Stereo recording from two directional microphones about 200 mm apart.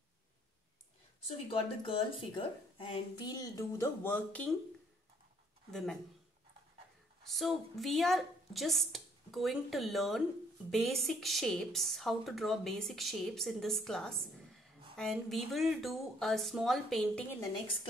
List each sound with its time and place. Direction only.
1.2 s speech: 25° left (ahead or behind); by 4.6 s 5° left (ahead or behind)
5.7 s speech: centre (ahead or behind)
7.2 s speech: centre (ahead or behind)